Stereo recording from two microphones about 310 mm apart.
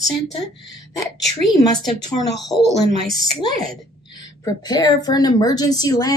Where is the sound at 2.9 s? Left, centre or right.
Centre.